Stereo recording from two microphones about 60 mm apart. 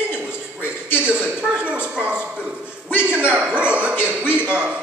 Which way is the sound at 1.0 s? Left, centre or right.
Right.